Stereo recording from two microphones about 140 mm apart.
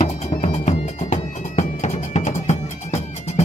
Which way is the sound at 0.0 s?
55° left (ahead or behind).